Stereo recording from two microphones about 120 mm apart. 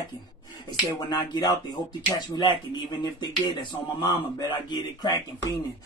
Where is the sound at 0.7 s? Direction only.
35° left (ahead or behind).